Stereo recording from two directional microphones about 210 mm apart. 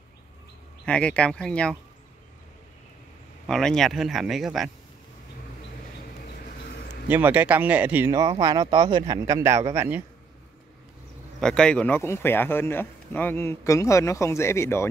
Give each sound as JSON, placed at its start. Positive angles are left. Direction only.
{"t": 0.8, "sound": "speech", "side_deg": 5}
{"t": 3.4, "sound": "speech", "side_deg": 0}
{"t": 7.1, "sound": "a man's voice", "side_deg": -10}
{"t": 11.3, "sound": "speech", "side_deg": 5}